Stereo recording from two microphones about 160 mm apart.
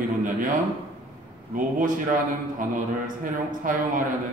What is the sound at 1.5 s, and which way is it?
A man's voice, 55° right (ahead or behind).